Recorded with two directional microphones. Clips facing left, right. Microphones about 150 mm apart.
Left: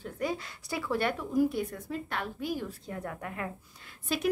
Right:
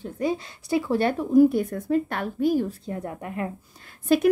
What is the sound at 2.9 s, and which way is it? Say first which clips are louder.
Speech: right 6 dB; 25° right (ahead or behind).